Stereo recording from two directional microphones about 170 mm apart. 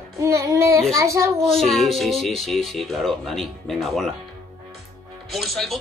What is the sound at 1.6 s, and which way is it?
Speech, centre (ahead or behind).